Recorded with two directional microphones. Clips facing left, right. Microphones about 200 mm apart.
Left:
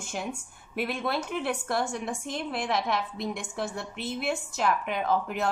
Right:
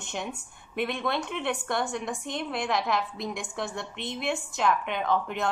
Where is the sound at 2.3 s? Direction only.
Centre (ahead or behind).